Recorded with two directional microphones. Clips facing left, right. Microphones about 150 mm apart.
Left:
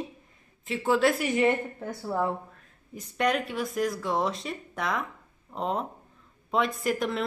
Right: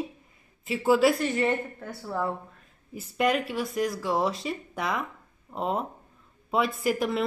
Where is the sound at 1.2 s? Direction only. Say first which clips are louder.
Left 2 dB; 15° left (ahead or behind).